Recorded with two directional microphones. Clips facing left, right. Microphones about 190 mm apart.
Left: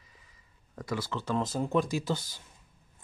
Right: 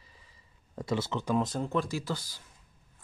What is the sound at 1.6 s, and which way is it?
Speech, 15° left (ahead or behind).